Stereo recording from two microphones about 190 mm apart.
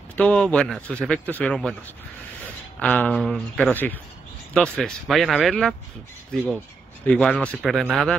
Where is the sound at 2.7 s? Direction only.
5° left (ahead or behind).